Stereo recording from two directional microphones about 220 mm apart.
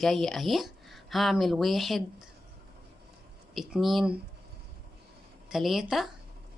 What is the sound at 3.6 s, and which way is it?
Speech, centre (ahead or behind).